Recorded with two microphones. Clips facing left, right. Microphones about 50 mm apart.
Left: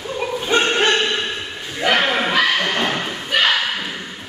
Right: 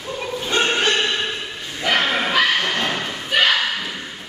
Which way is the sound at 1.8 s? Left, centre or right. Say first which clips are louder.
Left 2 dB; centre.